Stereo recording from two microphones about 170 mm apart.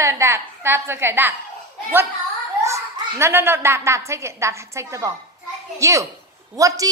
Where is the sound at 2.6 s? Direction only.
15° right (ahead or behind).